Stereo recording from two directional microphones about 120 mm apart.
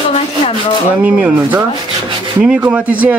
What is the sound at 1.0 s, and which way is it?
Speech, 15° right (ahead or behind).